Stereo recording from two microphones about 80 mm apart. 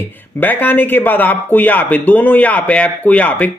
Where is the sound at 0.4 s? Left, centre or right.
Left.